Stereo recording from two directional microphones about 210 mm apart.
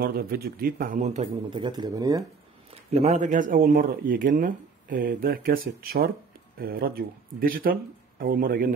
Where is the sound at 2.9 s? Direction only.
30° right (ahead or behind).